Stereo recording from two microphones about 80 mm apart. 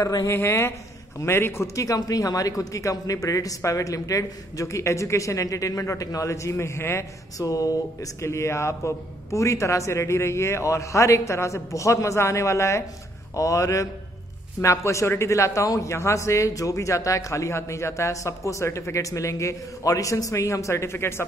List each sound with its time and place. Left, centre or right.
0.0 s a man's voice: left
0.3 s a man's voice: left
7.4 s a man's voice: left